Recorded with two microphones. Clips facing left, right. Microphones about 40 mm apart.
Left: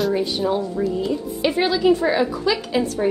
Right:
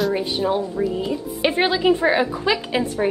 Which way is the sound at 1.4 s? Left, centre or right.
Right.